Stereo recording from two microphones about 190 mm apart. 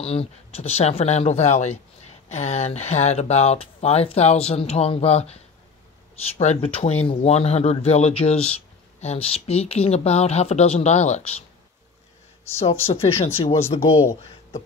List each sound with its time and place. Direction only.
0.0 s speech: 30° left (ahead or behind)
12.8 s speech: 30° left (ahead or behind)